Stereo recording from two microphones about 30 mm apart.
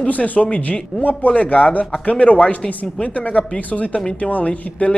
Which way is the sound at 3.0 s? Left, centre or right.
Left.